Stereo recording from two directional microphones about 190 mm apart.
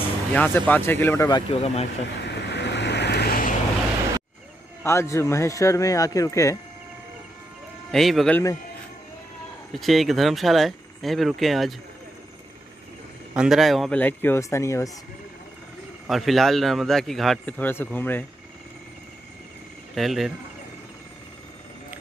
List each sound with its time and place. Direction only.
0.3 s speech: 10° left (ahead or behind)
1.5 s speech: 35° left (ahead or behind)
2.1 s vehicle: 65° left (ahead or behind)
4.8 s speech: 15° left (ahead or behind)
7.9 s a man's voice: centre (ahead or behind)
9.7 s a man's voice: centre (ahead or behind)
13.3 s speech: 5° right (ahead or behind); by 14.9 s 15° left (ahead or behind)
16.1 s a man's voice: centre (ahead or behind)
20.0 s a man's voice: centre (ahead or behind)